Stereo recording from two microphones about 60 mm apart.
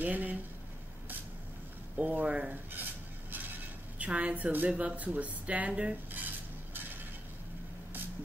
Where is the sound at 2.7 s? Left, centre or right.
Right.